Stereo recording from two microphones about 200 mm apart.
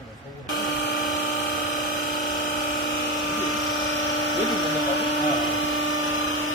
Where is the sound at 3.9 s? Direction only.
70° left (ahead or behind).